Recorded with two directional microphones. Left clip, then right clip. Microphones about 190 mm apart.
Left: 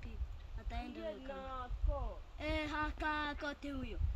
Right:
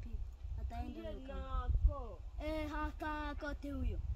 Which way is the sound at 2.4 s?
40° right (ahead or behind).